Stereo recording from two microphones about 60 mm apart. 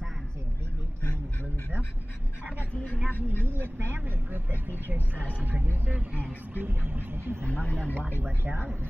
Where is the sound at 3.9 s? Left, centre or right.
Right.